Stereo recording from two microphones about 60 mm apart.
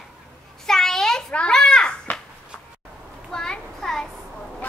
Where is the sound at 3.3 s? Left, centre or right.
Centre.